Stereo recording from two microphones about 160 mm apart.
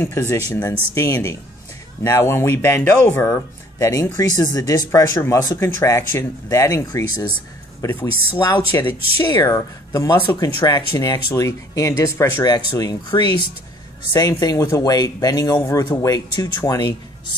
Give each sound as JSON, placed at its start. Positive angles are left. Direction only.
{"t": 0.0, "sound": "speech", "side_deg": 15}
{"t": 14.4, "sound": "speech", "side_deg": 25}